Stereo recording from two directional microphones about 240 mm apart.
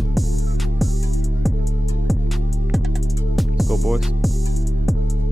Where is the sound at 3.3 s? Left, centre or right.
Centre.